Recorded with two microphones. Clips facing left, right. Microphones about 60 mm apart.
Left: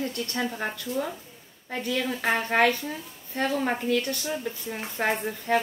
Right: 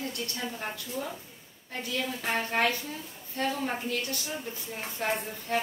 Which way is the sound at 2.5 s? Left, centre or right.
Left.